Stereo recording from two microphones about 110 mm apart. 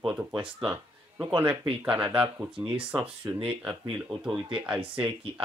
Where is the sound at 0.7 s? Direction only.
15° right (ahead or behind).